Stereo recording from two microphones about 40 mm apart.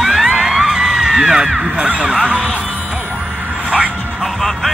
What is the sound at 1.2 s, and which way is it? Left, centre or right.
Crow, centre.